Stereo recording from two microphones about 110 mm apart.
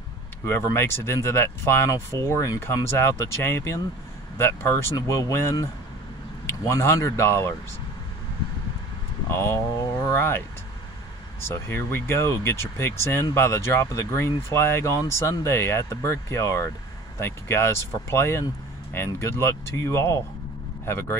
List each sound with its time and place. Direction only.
0.5 s speech: 20° left (ahead or behind)
9.3 s speech: 25° left (ahead or behind)
11.4 s speech: 25° left (ahead or behind)